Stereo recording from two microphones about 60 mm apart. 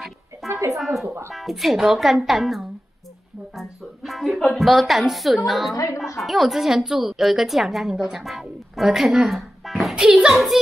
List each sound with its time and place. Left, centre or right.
0.4 s a sound: centre
0.7 s music: centre
1.0 s music: right
1.3 s a woman's voice: centre
3.5 s music: centre
4.4 s a woman's voice: centre
8.0 s music: centre
9.9 s a woman's voice: centre